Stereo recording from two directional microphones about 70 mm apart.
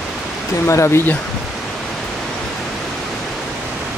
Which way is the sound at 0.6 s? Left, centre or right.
Left.